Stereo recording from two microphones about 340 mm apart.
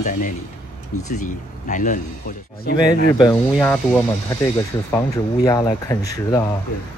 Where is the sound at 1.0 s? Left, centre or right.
Left.